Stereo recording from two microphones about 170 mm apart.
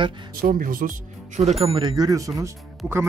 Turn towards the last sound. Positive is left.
turn(degrees=-15)  # may be behind; listen again after turning